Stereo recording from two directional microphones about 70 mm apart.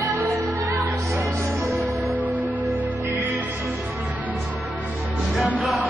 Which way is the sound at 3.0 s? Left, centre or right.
Right.